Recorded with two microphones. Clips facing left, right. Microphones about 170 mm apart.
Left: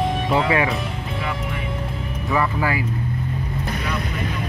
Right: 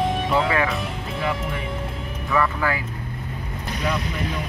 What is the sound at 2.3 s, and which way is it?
Music, 15° left (ahead or behind).